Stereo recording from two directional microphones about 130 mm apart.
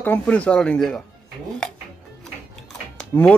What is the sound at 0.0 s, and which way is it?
Speech, 15° left (ahead or behind).